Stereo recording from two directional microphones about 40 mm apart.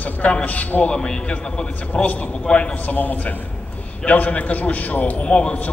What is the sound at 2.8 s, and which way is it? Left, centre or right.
A man's voice, left.